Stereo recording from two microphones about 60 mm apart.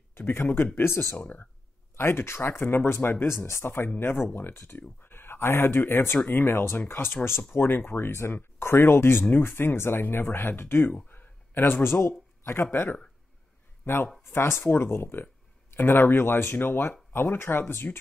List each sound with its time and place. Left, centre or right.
0.1 s speech: left
11.1 s a sound: left
12.7 s speech: left
14.3 s speech: left